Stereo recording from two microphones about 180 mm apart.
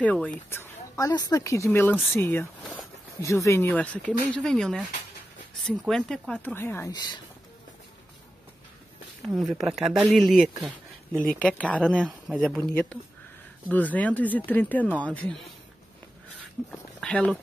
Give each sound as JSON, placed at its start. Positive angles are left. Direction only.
{"t": 0.0, "sound": "speech", "side_deg": 10}
{"t": 6.9, "sound": "speech", "side_deg": 25}
{"t": 9.3, "sound": "speech", "side_deg": 0}
{"t": 17.0, "sound": "speech", "side_deg": 5}